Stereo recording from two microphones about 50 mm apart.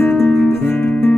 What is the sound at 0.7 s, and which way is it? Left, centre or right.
Guitar, left.